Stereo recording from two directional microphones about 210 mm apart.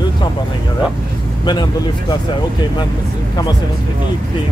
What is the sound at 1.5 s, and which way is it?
Speech, 20° left (ahead or behind).